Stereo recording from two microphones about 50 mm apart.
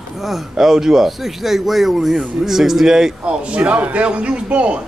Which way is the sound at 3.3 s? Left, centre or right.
Right.